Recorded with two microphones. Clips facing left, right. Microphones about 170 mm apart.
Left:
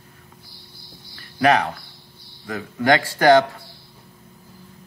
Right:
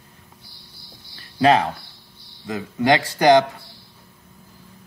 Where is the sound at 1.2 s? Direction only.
25° right (ahead or behind).